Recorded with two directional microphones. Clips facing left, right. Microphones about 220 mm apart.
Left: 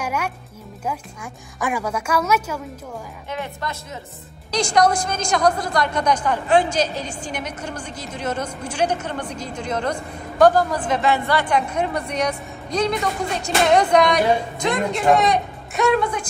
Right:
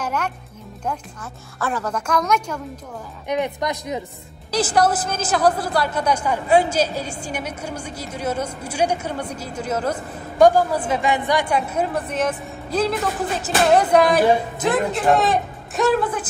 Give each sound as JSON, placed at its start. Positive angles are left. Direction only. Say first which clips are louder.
{"t": 0.0, "sound": "music", "louder": "even", "side_deg": 10}
{"t": 1.6, "sound": "a woman's voice", "louder": "left 1 dB", "side_deg": 10}
{"t": 3.3, "sound": "a woman's voice", "louder": "right 7 dB", "side_deg": -20}
{"t": 4.5, "sound": "a woman's voice", "louder": "even", "side_deg": -5}